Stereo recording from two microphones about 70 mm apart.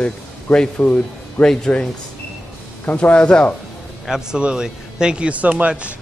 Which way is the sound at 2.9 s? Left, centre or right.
Centre.